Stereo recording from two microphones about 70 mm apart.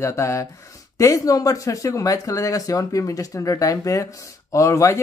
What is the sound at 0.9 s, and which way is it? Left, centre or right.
Speech, left.